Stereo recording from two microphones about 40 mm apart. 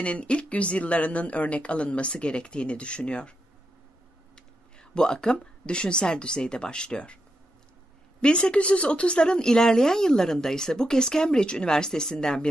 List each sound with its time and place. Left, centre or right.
0.0 s a woman's voice: left
4.7 s a woman's voice: centre
8.2 s a woman's voice: left